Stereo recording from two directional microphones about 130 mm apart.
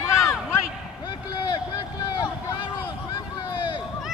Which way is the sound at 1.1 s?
35° left (ahead or behind).